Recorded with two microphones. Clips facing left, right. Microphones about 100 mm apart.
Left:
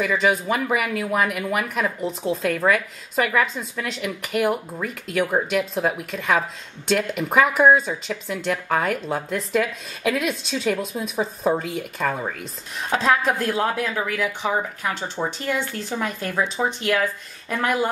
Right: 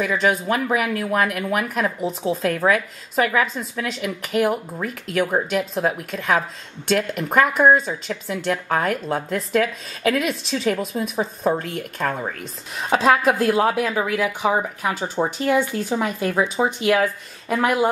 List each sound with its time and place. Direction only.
0.0 s speech: centre (ahead or behind)
12.9 s speech: 10° right (ahead or behind)